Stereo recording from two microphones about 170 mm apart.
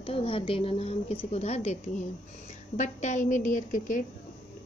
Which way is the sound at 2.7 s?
45° left (ahead or behind).